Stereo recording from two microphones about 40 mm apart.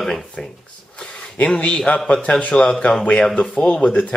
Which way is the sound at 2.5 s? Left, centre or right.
Left.